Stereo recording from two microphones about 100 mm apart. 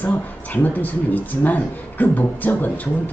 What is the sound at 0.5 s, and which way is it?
A woman's voice, 15° left (ahead or behind).